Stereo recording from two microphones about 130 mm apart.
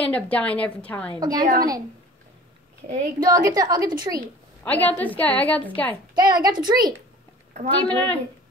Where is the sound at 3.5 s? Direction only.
30° right (ahead or behind).